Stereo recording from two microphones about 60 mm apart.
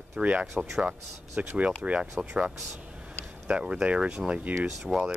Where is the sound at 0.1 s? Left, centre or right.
Right.